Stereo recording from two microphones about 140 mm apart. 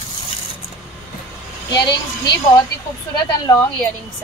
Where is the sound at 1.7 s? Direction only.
30° left (ahead or behind).